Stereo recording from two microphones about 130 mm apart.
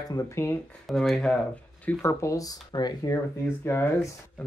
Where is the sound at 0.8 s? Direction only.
Centre (ahead or behind).